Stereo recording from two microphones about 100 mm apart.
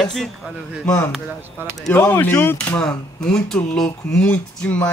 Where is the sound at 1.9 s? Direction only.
20° left (ahead or behind).